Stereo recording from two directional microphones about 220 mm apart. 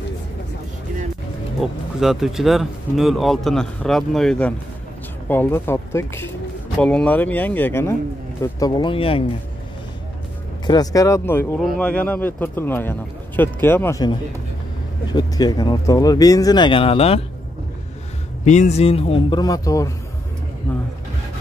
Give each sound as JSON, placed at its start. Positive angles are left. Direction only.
{"t": 1.6, "sound": "a man's voice", "side_deg": 0}
{"t": 10.7, "sound": "speech", "side_deg": 15}
{"t": 15.1, "sound": "speech", "side_deg": 20}
{"t": 18.4, "sound": "a man's voice", "side_deg": 30}